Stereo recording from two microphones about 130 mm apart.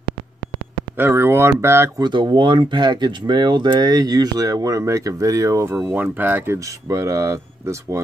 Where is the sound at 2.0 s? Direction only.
35° right (ahead or behind).